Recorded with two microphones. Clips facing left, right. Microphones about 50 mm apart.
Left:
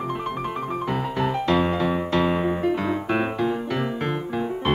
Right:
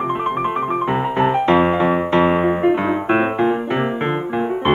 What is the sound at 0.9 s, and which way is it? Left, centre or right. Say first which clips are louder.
Music: right 6 dB; right.